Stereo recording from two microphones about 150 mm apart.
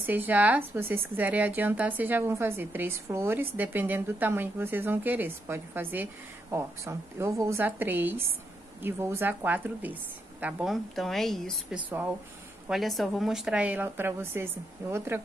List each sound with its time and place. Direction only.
0.0 s a woman's voice: 10° right (ahead or behind)